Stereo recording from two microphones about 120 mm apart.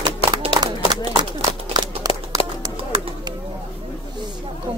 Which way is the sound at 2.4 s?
50° left (ahead or behind).